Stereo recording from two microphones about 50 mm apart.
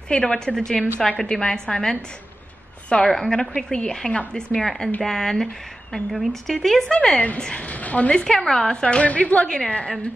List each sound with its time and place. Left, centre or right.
0.1 s a woman's voice: left
4.6 s a woman's voice: centre
6.1 s a woman's voice: centre
7.6 s a woman's voice: left
8.2 s a woman's voice: centre